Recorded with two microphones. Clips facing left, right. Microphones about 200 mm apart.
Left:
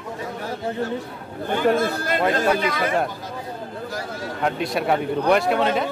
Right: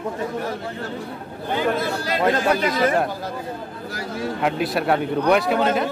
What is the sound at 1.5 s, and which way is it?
Speech, 50° left (ahead or behind).